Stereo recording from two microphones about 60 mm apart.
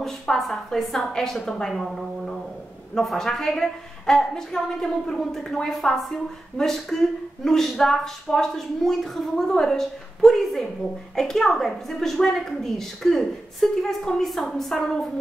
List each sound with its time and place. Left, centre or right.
0.0 s a woman's voice: centre